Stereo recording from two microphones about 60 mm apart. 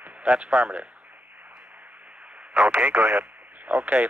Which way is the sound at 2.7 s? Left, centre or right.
Right.